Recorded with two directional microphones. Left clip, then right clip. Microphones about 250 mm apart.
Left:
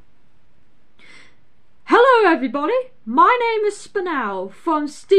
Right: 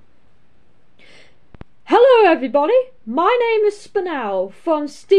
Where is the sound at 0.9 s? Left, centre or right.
Centre.